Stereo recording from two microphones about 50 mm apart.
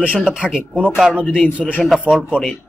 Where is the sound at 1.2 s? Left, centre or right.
Left.